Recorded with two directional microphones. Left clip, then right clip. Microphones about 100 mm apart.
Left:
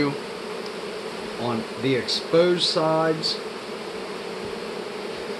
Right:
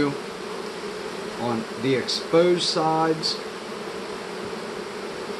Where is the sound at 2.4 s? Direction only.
20° left (ahead or behind).